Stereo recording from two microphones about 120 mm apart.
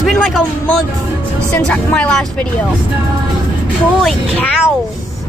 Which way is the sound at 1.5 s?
10° left (ahead or behind).